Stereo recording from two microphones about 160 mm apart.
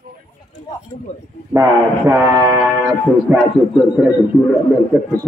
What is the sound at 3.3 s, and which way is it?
Speech, 5° right (ahead or behind).